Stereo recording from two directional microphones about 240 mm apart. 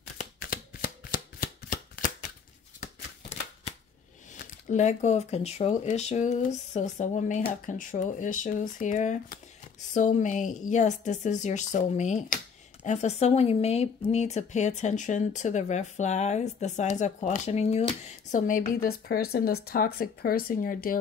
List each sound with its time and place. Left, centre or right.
0.2 s shuffling cards: left
4.4 s speech: left